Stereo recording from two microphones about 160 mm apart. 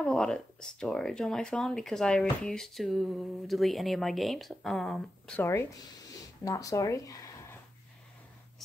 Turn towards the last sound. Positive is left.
turn(degrees=20)  # may be behind; listen again after turning